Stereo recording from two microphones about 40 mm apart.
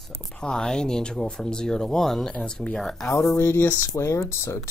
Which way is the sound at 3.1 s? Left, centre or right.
Left.